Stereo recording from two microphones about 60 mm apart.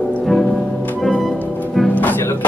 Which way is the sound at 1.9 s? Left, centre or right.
Left.